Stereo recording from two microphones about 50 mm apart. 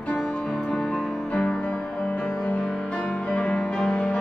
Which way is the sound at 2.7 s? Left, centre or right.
Left.